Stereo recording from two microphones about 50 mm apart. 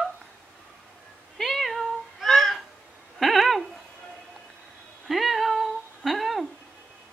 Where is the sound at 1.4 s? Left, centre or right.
Centre.